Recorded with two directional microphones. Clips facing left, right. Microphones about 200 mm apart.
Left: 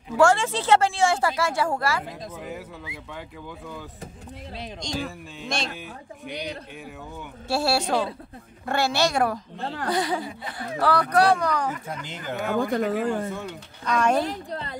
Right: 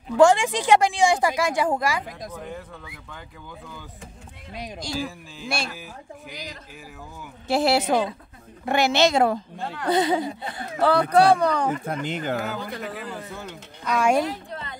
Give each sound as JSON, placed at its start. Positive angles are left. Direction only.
{"t": 0.2, "sound": "a woman's voice", "side_deg": -15}
{"t": 2.3, "sound": "speech", "side_deg": 5}
{"t": 4.6, "sound": "a woman's voice", "side_deg": -15}
{"t": 7.4, "sound": "speech", "side_deg": -20}
{"t": 11.8, "sound": "speech", "side_deg": -55}
{"t": 12.4, "sound": "speech", "side_deg": 50}
{"t": 13.3, "sound": "a woman's voice", "side_deg": -5}
{"t": 14.2, "sound": "speech", "side_deg": 35}